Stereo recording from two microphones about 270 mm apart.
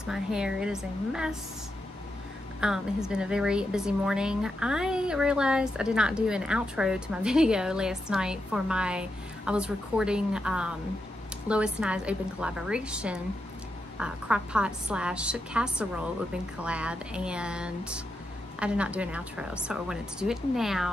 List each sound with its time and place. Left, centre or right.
0.0 s a woman's voice: centre
2.6 s a woman's voice: centre